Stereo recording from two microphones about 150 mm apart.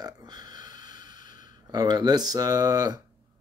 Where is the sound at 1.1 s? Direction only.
30° right (ahead or behind).